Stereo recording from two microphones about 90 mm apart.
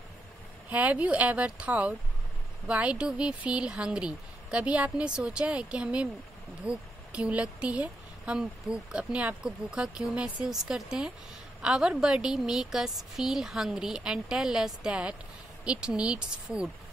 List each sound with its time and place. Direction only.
0.7 s speech: 15° right (ahead or behind)